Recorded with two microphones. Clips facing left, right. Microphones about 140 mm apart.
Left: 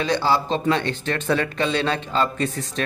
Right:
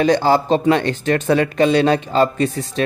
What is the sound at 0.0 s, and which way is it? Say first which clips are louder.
Speech: right 6 dB; 45° right (ahead or behind).